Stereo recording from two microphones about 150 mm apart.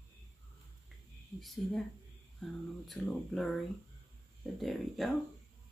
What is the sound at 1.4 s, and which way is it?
Speech, centre (ahead or behind).